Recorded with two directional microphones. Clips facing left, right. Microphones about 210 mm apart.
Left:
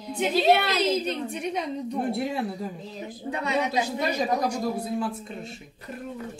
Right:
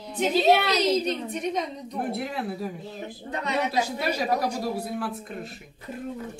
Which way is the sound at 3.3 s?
10° left (ahead or behind).